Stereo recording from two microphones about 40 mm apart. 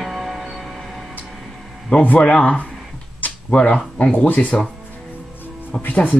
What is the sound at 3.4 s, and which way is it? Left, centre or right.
Speech, left.